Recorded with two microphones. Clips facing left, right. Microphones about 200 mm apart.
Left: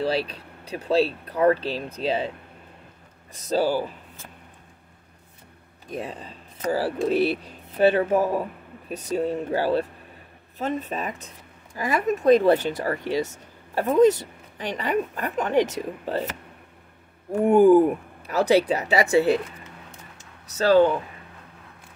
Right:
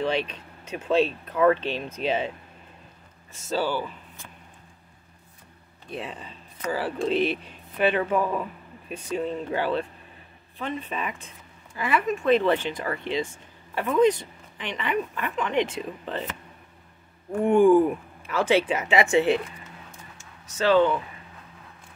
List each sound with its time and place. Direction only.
0.0 s speech: 35° left (ahead or behind)
3.3 s speech: 40° left (ahead or behind)
5.9 s speech: 40° left (ahead or behind)
17.5 s speech: 40° left (ahead or behind)
20.2 s a sound: 40° left (ahead or behind)